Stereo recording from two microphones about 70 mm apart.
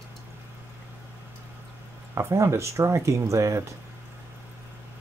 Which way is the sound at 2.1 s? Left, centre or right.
Right.